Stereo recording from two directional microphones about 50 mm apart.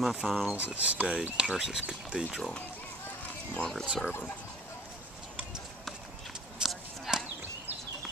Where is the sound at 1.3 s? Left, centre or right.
Centre.